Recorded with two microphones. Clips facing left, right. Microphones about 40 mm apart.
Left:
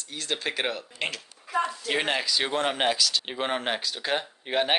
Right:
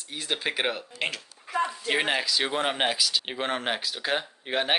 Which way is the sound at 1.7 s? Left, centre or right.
Centre.